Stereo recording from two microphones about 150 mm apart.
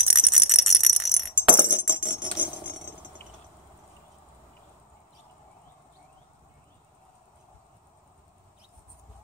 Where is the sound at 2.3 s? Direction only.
10° right (ahead or behind).